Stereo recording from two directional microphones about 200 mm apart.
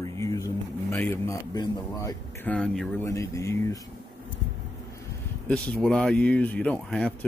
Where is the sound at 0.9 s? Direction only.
10° left (ahead or behind).